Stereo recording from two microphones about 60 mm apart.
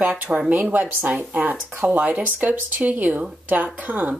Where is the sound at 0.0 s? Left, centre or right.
Right.